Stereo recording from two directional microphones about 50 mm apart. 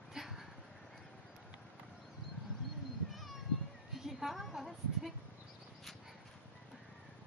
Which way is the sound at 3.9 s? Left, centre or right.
Centre.